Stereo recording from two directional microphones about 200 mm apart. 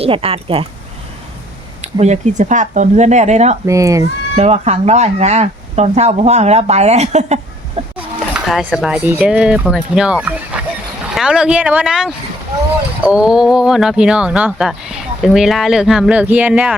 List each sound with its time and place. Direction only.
0.0 s speech: 30° right (ahead or behind)
2.0 s speech: 35° right (ahead or behind)
3.7 s speech: 15° right (ahead or behind)
4.4 s speech: 35° right (ahead or behind)
7.9 s speech: 5° right (ahead or behind)